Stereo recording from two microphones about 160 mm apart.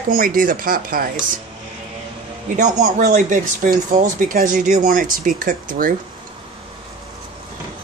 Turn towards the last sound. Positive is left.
turn(degrees=-60)  # may be behind; listen again after turning